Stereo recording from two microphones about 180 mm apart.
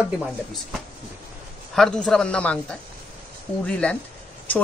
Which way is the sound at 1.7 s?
5° left (ahead or behind).